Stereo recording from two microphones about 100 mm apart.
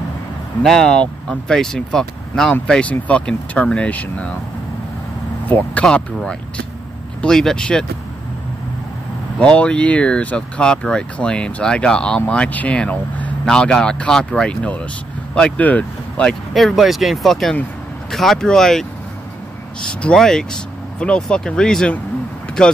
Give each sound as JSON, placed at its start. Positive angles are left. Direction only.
{"t": 0.6, "sound": "speech", "side_deg": 5}
{"t": 5.5, "sound": "speech", "side_deg": 15}
{"t": 9.4, "sound": "speech", "side_deg": 10}
{"t": 16.5, "sound": "speech", "side_deg": 0}
{"t": 19.9, "sound": "speech", "side_deg": 10}